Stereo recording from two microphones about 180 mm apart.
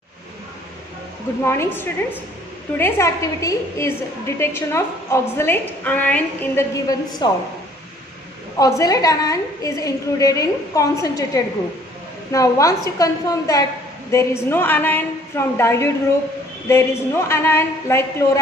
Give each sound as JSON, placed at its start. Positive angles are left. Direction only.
{"t": 1.4, "sound": "a woman's voice", "side_deg": 15}
{"t": 8.5, "sound": "a woman's voice", "side_deg": 20}